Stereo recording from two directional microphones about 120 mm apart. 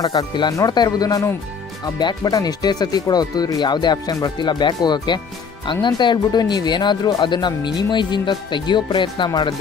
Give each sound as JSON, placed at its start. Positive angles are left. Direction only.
{"t": 0.0, "sound": "speech", "side_deg": 30}